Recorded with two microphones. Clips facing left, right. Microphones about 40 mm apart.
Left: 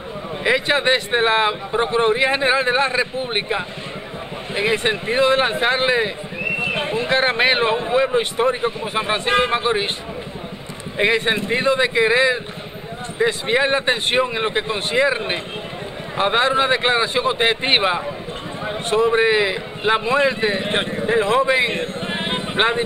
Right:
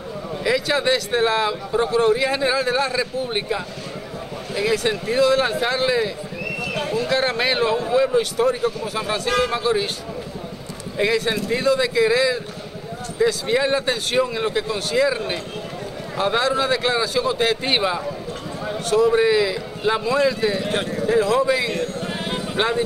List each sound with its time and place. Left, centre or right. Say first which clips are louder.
0.4 s speech: left 2 dB; left
11.0 s speech: left 2 dB; left